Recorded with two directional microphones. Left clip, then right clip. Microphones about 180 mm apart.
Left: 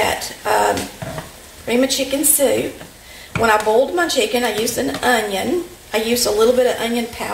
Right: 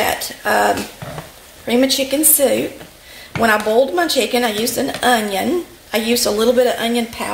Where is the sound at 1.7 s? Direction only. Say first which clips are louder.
Right 2 dB; 55° right (ahead or behind).